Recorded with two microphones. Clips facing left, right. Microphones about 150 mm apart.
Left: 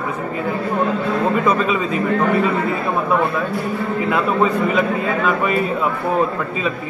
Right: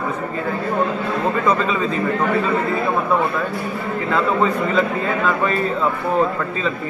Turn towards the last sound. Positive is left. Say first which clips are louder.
# left 1 dB
turn(degrees=5)  # may be behind; listen again after turning